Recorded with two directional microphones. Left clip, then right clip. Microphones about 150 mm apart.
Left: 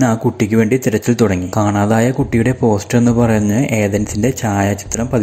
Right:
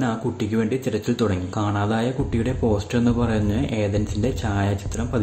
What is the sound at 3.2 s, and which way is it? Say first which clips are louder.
Speech: left 9 dB; 35° left (ahead or behind).